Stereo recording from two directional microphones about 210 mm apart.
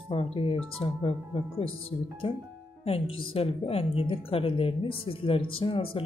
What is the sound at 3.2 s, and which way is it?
Speech, 25° left (ahead or behind).